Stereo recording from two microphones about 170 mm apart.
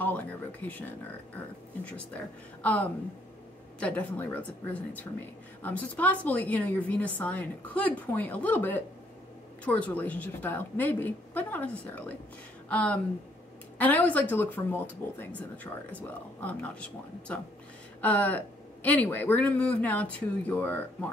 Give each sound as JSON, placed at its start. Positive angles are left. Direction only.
{"t": 0.0, "sound": "a woman's voice", "side_deg": 10}
{"t": 2.6, "sound": "a woman's voice", "side_deg": 10}
{"t": 18.0, "sound": "a woman's voice", "side_deg": 10}